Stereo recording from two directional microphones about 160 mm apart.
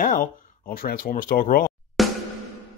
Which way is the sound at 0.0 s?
55° left (ahead or behind).